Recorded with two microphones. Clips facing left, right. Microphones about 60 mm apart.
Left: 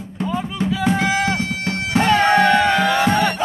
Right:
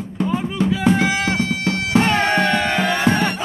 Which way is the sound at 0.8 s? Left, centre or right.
Centre.